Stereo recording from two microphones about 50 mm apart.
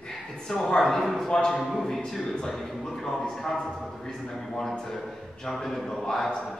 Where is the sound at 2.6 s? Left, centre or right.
Centre.